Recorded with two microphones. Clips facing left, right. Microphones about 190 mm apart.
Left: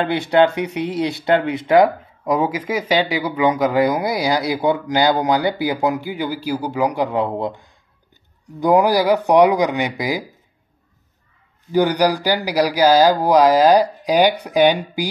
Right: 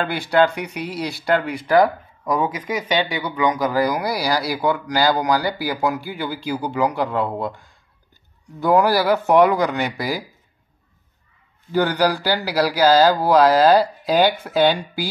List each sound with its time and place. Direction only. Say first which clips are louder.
0.0 s speech: left 3 dB; 20° left (ahead or behind)
11.7 s speech: left 3 dB; 15° left (ahead or behind)